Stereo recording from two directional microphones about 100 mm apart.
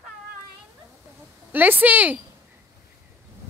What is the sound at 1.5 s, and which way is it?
Speech, 20° right (ahead or behind).